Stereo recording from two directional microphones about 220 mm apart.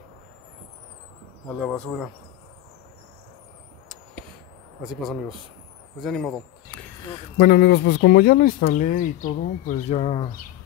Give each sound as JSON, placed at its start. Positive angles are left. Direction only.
{"t": 1.6, "sound": "insect", "side_deg": 5}
{"t": 5.9, "sound": "speech", "side_deg": 0}
{"t": 7.3, "sound": "speech", "side_deg": 45}